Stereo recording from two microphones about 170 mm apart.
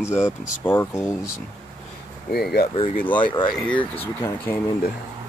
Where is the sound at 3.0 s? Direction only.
30° left (ahead or behind).